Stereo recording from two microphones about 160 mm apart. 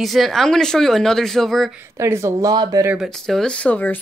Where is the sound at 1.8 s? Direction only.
15° right (ahead or behind).